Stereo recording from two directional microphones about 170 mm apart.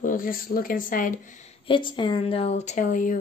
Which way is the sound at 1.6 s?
30° left (ahead or behind).